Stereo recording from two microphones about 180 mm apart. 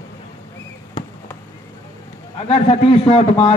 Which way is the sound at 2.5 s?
30° left (ahead or behind).